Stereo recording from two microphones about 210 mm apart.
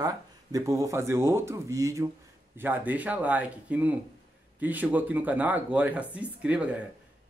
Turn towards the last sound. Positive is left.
turn(degrees=-5)  # may be behind; listen again after turning